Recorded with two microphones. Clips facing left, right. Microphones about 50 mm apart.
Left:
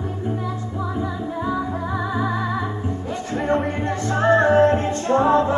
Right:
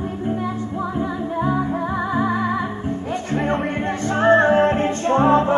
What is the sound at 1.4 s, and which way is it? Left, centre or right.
Music, right.